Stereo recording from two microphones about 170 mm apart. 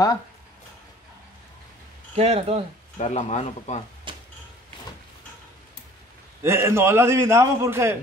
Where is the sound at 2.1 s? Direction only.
40° right (ahead or behind).